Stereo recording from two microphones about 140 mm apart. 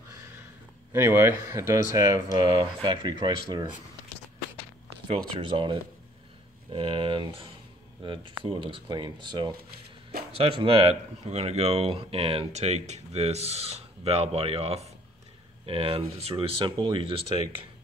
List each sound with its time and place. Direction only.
0.9 s speech: 15° right (ahead or behind)
4.8 s speech: 40° right (ahead or behind)
10.6 s speech: 45° right (ahead or behind)